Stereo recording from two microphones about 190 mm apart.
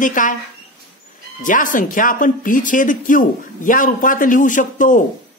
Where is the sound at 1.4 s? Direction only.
45° left (ahead or behind).